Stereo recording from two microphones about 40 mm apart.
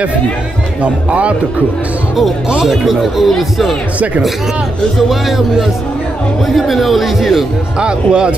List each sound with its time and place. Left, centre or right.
0.8 s speech: right
2.6 s speech: centre
6.4 s speech: centre
7.8 s speech: right